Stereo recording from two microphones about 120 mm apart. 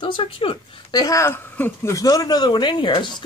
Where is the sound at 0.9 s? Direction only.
30° left (ahead or behind).